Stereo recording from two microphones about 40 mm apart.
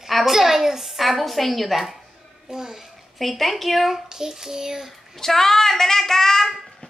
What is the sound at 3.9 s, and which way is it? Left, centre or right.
Speech, centre.